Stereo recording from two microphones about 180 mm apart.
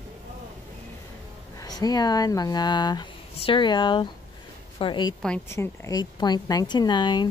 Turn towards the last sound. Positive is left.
turn(degrees=25)  # may be behind; listen again after turning